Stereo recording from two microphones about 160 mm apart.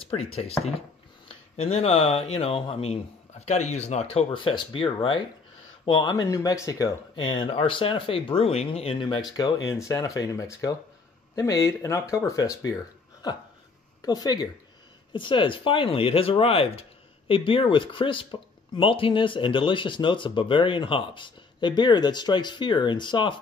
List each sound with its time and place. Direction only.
0.1 s speech: 40° left (ahead or behind)